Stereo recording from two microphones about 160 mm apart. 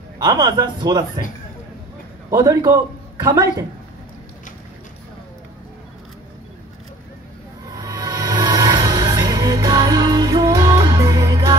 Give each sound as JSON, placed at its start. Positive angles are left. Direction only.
{"t": 0.2, "sound": "a man's voice", "side_deg": -25}
{"t": 2.3, "sound": "a man's voice", "side_deg": -20}
{"t": 7.7, "sound": "music", "side_deg": -25}